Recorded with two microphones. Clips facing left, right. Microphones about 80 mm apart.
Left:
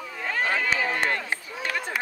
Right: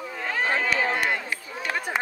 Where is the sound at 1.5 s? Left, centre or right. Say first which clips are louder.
Right 1 dB; right.